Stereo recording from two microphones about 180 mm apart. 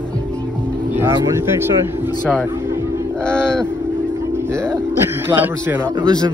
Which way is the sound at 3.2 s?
5° left (ahead or behind).